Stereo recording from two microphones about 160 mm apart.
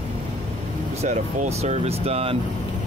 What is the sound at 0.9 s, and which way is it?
Speech, 45° right (ahead or behind).